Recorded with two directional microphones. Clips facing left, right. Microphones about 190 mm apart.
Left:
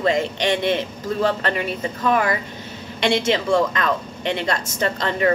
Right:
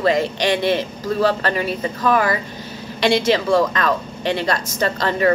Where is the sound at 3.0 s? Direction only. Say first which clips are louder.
Right 3 dB; 25° left (ahead or behind).